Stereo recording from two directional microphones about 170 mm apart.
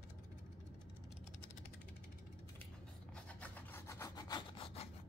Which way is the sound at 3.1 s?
10° left (ahead or behind).